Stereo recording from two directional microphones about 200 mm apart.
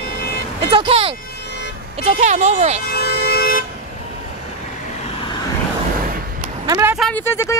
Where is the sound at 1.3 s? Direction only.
60° left (ahead or behind).